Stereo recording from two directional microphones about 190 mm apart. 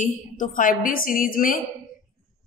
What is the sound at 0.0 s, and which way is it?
Speech, 45° left (ahead or behind).